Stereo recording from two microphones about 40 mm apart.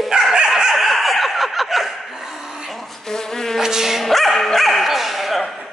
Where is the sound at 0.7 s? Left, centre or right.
Centre.